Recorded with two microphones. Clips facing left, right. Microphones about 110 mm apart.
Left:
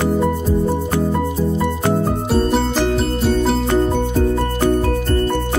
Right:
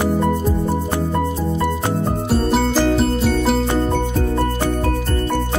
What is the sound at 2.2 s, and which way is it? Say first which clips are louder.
Music: right 1 dB; centre (ahead or behind).